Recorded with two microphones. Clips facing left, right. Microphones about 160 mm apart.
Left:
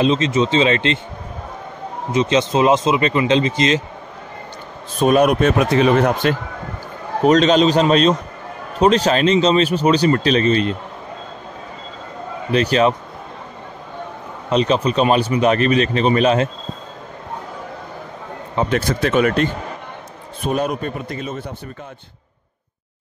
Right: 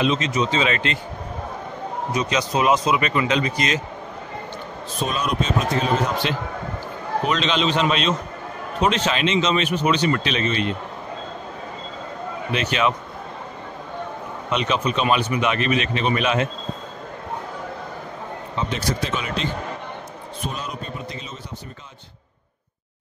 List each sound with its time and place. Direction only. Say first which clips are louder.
0.0 s speech: left 5 dB; 30° left (ahead or behind)
2.1 s speech: left 7 dB; 25° left (ahead or behind)
5.0 s speech: left 11 dB; 60° left (ahead or behind)
7.2 s speech: left 10 dB; 40° left (ahead or behind)
12.5 s speech: left 7 dB; 35° left (ahead or behind)
14.5 s speech: left 6 dB; 35° left (ahead or behind)
18.6 s speech: left 7 dB; 55° left (ahead or behind)
20.5 s speech: left 10 dB; 60° left (ahead or behind)